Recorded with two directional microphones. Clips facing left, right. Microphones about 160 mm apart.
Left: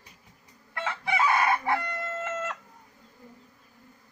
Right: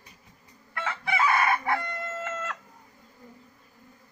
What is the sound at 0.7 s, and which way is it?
Chicken, 20° left (ahead or behind).